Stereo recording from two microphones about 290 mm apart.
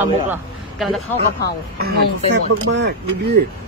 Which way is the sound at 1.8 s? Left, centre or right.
Right.